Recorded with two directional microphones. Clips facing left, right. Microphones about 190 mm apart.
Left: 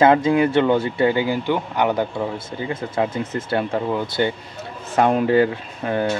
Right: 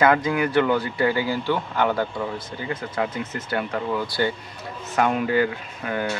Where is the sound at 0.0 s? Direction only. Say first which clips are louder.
Left 5 dB; 25° left (ahead or behind).